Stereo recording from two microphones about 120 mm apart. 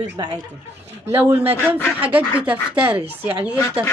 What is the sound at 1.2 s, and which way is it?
A man's voice, 20° right (ahead or behind).